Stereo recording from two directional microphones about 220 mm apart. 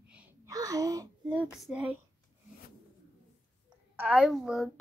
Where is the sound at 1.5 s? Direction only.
5° right (ahead or behind).